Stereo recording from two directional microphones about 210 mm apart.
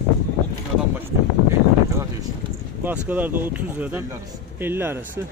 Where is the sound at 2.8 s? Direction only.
10° right (ahead or behind).